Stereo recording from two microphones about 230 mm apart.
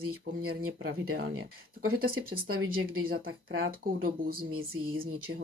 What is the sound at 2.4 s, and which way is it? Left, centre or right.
Speech, right.